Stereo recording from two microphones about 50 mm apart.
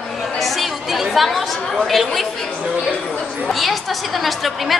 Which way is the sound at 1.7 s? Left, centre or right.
Centre.